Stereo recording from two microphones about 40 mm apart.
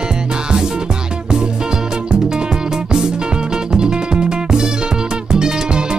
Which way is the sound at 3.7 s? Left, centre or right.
Right.